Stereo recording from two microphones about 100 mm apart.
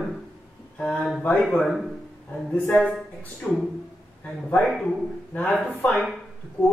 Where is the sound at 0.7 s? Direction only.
5° left (ahead or behind).